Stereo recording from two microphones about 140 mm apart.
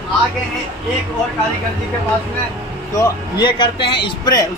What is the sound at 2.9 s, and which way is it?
A man's voice, 35° left (ahead or behind).